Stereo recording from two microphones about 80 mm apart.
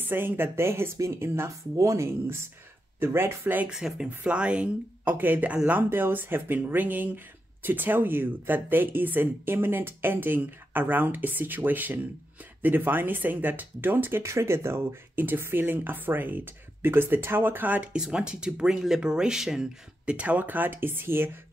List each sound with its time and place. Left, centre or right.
0.0 s speech: right
3.6 s speech: centre
5.1 s speech: right
17.9 s speech: centre; by 21.4 s right